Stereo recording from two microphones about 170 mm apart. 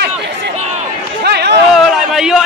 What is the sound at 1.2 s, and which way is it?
Run, 75° right (ahead or behind).